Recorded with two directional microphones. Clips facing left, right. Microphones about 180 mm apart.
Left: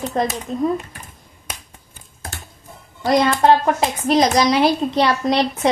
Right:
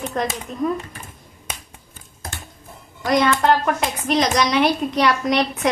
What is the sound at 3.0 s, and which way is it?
Speech, 30° left (ahead or behind).